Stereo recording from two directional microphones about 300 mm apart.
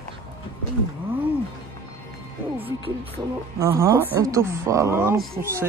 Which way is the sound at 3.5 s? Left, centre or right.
Centre.